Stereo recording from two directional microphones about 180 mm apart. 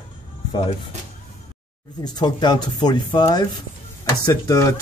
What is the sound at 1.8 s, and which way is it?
Speech, 20° left (ahead or behind).